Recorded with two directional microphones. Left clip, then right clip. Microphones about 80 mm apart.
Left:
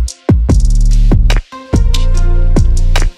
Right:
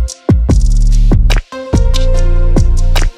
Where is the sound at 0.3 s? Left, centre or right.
Left.